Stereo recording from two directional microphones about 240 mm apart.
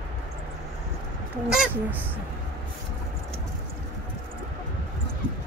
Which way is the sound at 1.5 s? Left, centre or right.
Centre.